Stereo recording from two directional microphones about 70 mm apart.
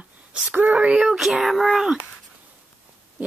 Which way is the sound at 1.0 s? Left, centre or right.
Centre.